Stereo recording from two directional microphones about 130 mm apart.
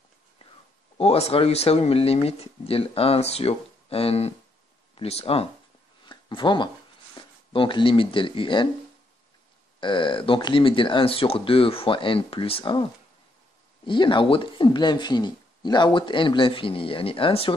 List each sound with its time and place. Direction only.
0.9 s speech: 50° left (ahead or behind)
6.0 s a sound: 40° left (ahead or behind)
7.2 s speech: 40° left (ahead or behind)
9.8 s speech: 40° left (ahead or behind)
13.8 s speech: 40° left (ahead or behind)